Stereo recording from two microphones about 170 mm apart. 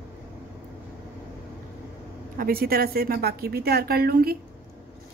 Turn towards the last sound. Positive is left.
turn(degrees=-65)  # may be behind; listen again after turning